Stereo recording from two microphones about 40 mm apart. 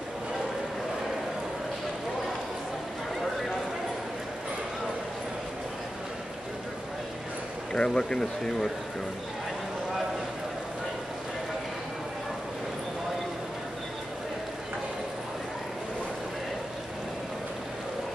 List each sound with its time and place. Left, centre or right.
7.7 s speech: centre